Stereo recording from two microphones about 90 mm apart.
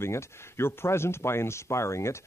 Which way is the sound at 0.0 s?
30° left (ahead or behind).